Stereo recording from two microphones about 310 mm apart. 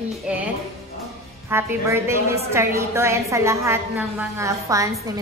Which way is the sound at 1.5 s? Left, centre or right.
Centre.